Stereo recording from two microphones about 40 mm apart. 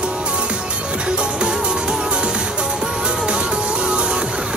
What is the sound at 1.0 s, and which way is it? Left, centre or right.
Music, right.